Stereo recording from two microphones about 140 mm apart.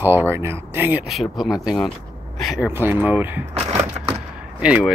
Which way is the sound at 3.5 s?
45° right (ahead or behind).